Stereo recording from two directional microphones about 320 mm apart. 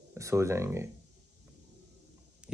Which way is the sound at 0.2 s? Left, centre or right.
Centre.